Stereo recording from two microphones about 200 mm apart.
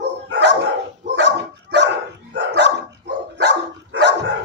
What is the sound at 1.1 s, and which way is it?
Dog, 60° right (ahead or behind).